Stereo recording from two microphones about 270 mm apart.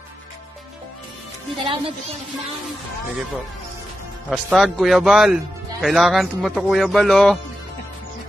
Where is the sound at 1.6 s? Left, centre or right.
Right.